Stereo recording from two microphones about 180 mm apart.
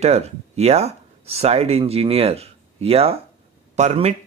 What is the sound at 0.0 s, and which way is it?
Speech, 35° right (ahead or behind).